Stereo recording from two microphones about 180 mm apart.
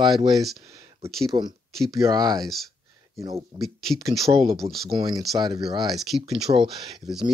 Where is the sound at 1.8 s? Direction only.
20° right (ahead or behind).